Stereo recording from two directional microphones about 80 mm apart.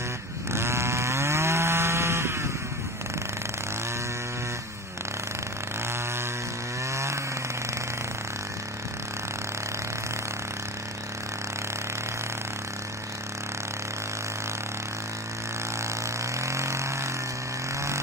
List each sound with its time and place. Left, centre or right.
0.5 s chainsaw: right
6.9 s chainsaw: right
16.4 s vehicle: right